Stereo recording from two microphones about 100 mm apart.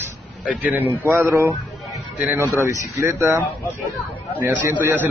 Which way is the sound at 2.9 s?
30° right (ahead or behind).